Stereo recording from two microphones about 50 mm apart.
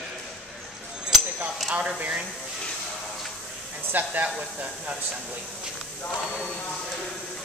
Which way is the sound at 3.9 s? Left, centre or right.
Right.